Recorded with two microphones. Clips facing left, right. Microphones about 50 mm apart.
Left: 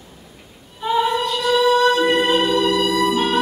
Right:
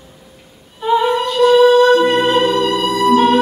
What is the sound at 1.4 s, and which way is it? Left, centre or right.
Music, right.